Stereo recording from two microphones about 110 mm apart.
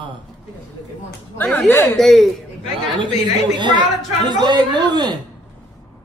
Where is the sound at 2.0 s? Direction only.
5° left (ahead or behind).